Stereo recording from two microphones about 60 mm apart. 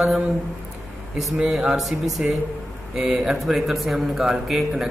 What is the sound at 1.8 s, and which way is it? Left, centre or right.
Speech, centre.